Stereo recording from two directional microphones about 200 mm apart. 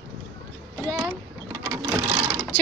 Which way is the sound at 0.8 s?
10° right (ahead or behind).